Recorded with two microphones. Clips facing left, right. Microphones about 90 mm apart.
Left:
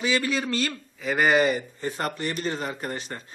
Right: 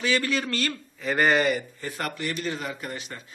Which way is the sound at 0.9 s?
5° left (ahead or behind).